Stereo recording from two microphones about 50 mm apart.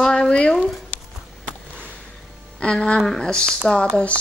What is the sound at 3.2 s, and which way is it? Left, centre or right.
Speech, centre.